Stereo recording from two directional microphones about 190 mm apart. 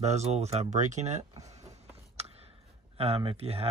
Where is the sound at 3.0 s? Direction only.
30° right (ahead or behind).